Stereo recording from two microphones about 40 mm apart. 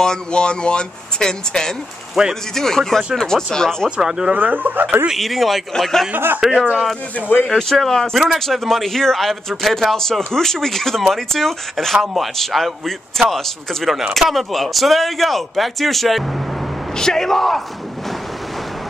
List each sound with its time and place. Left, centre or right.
0.0 s speech: centre
2.2 s speech: centre
2.5 s speech: centre
4.0 s speech: centre
4.3 s speech: right
5.1 s speech: centre
6.1 s speech: right
7.2 s speech: left
7.4 s speech: centre
16.9 s speech: centre